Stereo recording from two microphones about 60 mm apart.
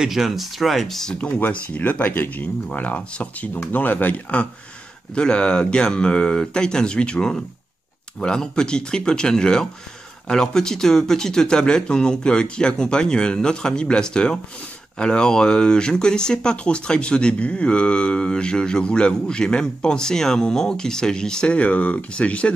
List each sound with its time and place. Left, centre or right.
0.0 s speech: centre
1.1 s speech: left
5.1 s speech: centre